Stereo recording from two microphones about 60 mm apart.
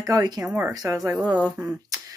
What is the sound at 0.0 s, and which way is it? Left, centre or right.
Speech, right.